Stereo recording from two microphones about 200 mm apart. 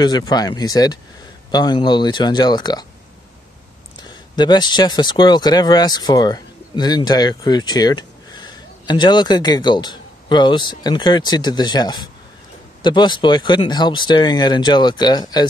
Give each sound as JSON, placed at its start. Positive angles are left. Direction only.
{"t": 0.0, "sound": "speech", "side_deg": 20}
{"t": 4.0, "sound": "speech", "side_deg": 20}